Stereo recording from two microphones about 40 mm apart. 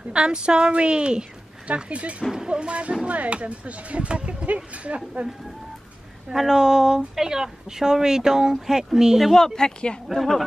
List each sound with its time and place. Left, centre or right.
0.1 s a woman's voice: right
2.3 s a woman's voice: right
6.3 s a woman's voice: centre
9.2 s speech: centre